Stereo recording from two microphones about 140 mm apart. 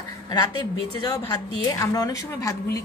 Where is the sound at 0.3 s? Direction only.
30° left (ahead or behind).